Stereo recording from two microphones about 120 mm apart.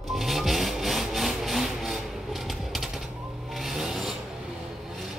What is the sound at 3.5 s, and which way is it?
Rub, centre (ahead or behind).